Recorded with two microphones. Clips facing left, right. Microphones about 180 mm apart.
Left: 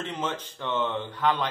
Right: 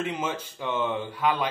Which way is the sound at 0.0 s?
10° right (ahead or behind).